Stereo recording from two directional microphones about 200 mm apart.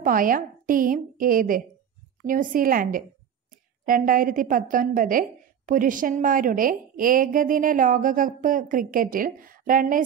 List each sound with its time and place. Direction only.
0.0 s a woman's voice: 45° right (ahead or behind)